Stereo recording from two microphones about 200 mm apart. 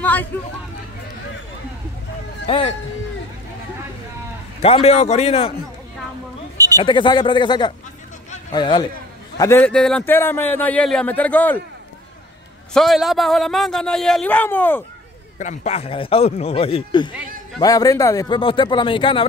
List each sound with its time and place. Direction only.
0.0 s vehicle: 10° left (ahead or behind)
2.4 s speech: 25° left (ahead or behind)
4.6 s a man's voice: 30° left (ahead or behind)
6.8 s speech: 20° left (ahead or behind)
9.4 s a man's voice: 10° left (ahead or behind)
12.7 s a man's voice: centre (ahead or behind)
15.3 s speech: 35° left (ahead or behind)